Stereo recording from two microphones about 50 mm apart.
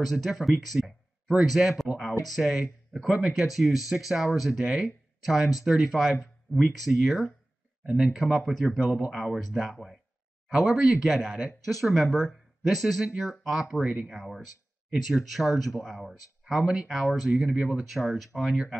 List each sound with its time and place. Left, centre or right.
0.0 s speech: centre
7.8 s speech: centre
8.3 s speech: centre
10.5 s speech: centre
11.1 s speech: centre
12.8 s speech: centre
16.6 s speech: centre
17.0 s speech: centre